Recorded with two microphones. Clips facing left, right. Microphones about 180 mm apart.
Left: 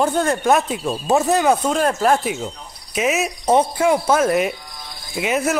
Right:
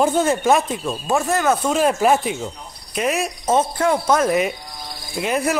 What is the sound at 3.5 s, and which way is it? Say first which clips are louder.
Speech: left 2 dB; 10° left (ahead or behind).